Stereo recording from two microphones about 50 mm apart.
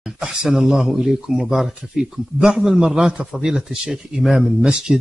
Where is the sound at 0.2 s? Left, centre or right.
Centre.